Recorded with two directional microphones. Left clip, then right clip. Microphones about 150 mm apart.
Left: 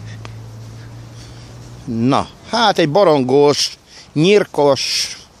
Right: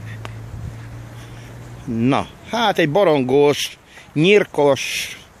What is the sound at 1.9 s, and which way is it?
Speech, 20° left (ahead or behind).